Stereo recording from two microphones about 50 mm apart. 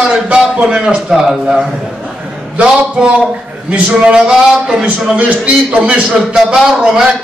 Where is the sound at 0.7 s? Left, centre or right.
Centre.